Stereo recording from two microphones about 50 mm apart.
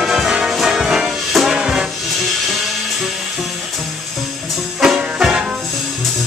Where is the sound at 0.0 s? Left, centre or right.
Centre.